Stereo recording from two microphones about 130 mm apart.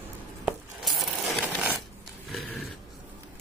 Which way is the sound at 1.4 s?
10° right (ahead or behind).